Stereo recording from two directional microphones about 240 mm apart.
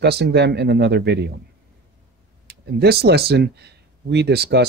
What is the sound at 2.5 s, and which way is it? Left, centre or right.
Speech, right.